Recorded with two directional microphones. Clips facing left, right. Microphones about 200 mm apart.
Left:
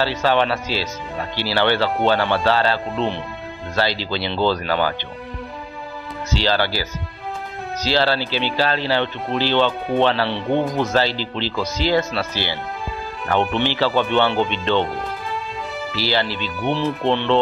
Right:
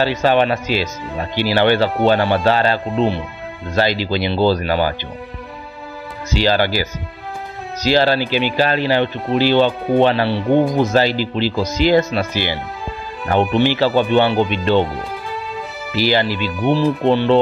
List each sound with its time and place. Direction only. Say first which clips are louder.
0.0 s speech: right 4 dB; 15° right (ahead or behind)
6.3 s speech: right 4 dB; 15° right (ahead or behind)
13.3 s speech: right 5 dB; 10° right (ahead or behind)
15.9 s speech: right 6 dB; 15° right (ahead or behind)